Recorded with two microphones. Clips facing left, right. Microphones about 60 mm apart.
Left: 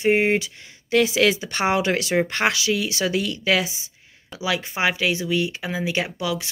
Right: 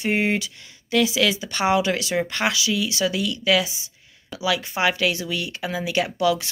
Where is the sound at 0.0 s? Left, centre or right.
Left.